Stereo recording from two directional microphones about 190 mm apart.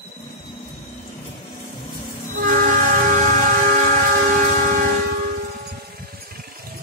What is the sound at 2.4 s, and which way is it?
Train, 45° right (ahead or behind).